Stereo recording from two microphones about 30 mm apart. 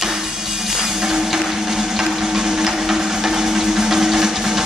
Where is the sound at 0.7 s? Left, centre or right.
Centre.